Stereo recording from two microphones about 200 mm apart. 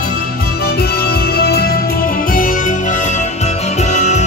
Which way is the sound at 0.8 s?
50° left (ahead or behind).